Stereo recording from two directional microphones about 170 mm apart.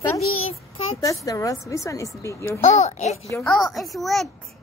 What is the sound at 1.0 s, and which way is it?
A woman's voice, 20° left (ahead or behind).